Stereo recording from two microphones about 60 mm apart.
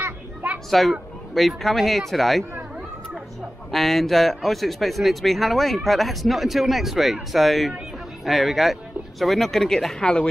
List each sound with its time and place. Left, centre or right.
0.0 s children playing: right
0.7 s speech: centre
3.7 s speech: centre